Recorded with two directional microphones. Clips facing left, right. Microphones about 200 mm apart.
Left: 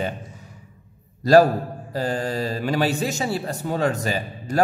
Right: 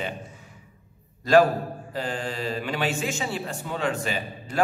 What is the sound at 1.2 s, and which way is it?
A man's voice, 40° left (ahead or behind).